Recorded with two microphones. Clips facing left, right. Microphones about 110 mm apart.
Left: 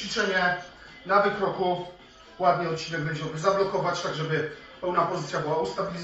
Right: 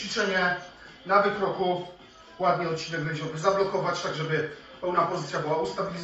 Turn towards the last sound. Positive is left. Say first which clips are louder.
# even
turn(degrees=0)  # may be behind; listen again after turning